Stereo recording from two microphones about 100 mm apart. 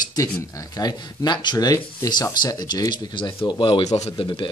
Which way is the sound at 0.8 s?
45° left (ahead or behind).